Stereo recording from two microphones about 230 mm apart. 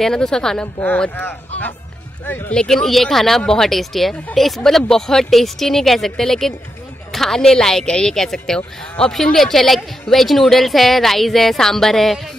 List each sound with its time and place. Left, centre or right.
0.0 s speech: centre